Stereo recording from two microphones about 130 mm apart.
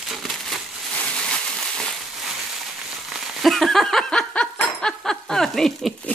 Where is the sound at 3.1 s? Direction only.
Centre (ahead or behind).